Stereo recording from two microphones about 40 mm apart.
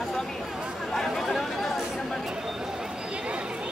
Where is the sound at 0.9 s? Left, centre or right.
Centre.